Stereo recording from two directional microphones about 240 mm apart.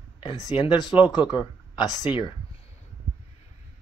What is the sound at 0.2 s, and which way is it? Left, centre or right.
Speech, centre.